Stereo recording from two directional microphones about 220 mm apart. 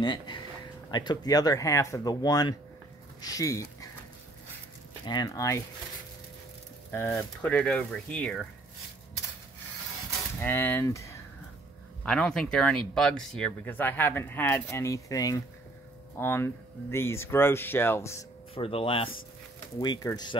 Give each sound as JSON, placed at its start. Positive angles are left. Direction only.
{"t": 0.0, "sound": "speech", "side_deg": 20}
{"t": 5.0, "sound": "speech", "side_deg": 20}
{"t": 6.9, "sound": "speech", "side_deg": 10}
{"t": 10.4, "sound": "speech", "side_deg": 10}
{"t": 18.5, "sound": "speech", "side_deg": 25}